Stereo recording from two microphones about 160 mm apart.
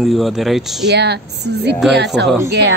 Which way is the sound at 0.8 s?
90° right.